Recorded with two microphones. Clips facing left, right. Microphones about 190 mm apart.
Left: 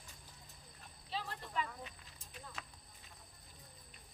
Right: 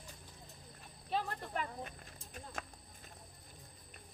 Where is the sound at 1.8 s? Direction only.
50° right (ahead or behind).